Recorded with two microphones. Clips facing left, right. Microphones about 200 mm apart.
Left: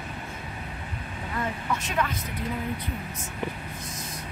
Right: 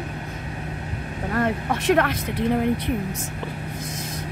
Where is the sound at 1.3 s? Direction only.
65° right (ahead or behind).